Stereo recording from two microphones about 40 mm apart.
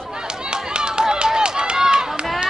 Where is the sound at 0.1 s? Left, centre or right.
Centre.